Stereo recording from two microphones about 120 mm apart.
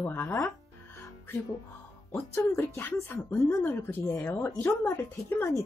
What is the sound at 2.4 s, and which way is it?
Speech, 20° left (ahead or behind).